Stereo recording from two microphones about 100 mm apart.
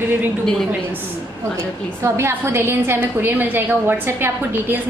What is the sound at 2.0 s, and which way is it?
A woman's voice, 30° right (ahead or behind).